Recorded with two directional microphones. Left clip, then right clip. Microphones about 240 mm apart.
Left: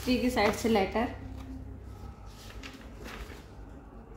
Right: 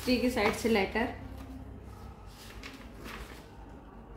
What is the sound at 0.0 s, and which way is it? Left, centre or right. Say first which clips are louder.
A woman's voice: left 1 dB; centre.